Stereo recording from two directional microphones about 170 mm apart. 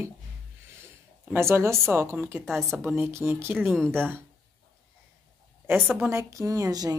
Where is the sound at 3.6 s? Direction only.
5° left (ahead or behind).